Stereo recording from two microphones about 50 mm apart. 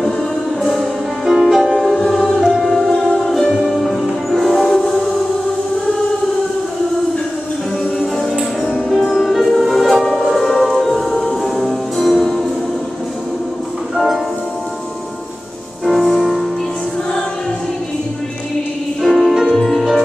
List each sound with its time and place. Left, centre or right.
0.6 s music: centre
8.9 s music: centre
13.9 s music: centre
15.8 s music: centre
19.0 s music: centre